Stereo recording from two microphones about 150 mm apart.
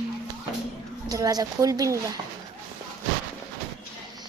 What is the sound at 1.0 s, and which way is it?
A woman's voice, 25° right (ahead or behind).